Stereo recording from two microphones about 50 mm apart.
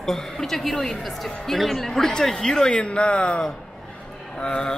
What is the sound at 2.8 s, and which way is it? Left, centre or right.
Speech, left.